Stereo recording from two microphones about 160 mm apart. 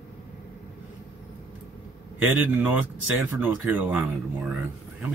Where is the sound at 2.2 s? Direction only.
10° right (ahead or behind).